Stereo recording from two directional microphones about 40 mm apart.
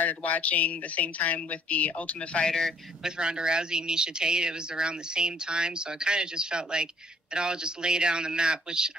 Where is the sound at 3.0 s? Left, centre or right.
Right.